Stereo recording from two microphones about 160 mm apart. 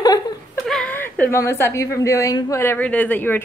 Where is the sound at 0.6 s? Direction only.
Centre (ahead or behind).